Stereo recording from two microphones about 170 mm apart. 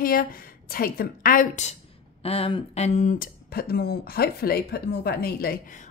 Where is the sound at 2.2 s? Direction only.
35° left (ahead or behind).